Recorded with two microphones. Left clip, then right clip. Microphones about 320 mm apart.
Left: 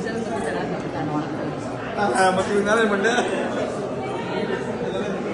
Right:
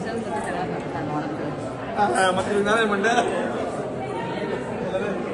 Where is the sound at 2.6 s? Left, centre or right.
Centre.